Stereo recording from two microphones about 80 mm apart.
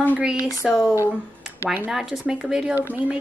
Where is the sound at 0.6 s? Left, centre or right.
Centre.